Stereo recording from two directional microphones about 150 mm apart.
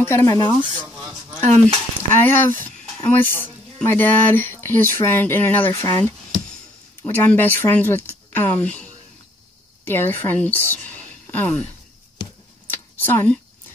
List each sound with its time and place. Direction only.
0.0 s speech: 15° left (ahead or behind)
1.7 s speech: 10° left (ahead or behind)
5.7 s speech: 25° left (ahead or behind)
7.0 s speech: 10° left (ahead or behind)
12.6 s a sound: 15° left (ahead or behind)